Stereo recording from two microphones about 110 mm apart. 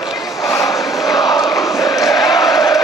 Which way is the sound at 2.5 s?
35° left (ahead or behind).